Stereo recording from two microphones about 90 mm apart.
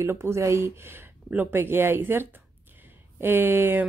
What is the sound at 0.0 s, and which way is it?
Speech, 30° right (ahead or behind).